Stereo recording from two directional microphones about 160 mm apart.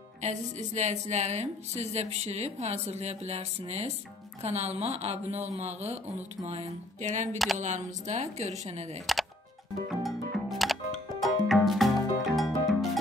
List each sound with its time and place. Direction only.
0.2 s a woman's voice: 45° right (ahead or behind)
9.8 s music: centre (ahead or behind)